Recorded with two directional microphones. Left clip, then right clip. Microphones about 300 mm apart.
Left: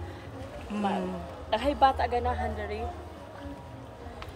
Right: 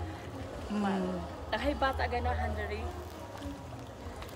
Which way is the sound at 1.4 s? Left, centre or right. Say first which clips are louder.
Left 8 dB; left.